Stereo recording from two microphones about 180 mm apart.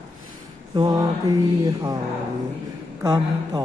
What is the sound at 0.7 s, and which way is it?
Mantra, 20° right (ahead or behind).